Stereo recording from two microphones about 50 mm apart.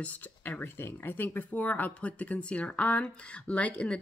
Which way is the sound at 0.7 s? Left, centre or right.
Left.